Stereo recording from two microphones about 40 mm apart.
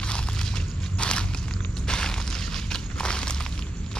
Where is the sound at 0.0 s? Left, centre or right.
Left.